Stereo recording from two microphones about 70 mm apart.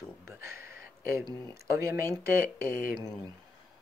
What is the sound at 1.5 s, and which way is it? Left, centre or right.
Speech, right.